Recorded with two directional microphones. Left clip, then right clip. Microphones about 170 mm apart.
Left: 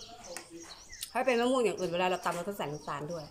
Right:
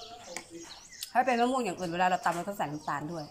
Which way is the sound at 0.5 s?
15° left (ahead or behind).